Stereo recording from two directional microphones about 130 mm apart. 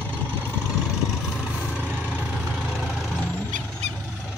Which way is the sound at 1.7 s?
10° right (ahead or behind).